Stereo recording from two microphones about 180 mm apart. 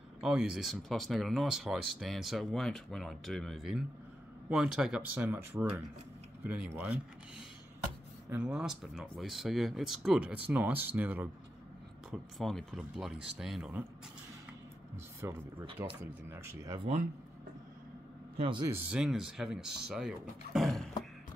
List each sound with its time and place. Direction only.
0.2 s speech: 5° right (ahead or behind)
12.1 s speech: centre (ahead or behind)
15.2 s speech: 15° right (ahead or behind)
16.7 s speech: 35° right (ahead or behind)
18.4 s speech: 25° right (ahead or behind)
18.7 s speech: 5° right (ahead or behind)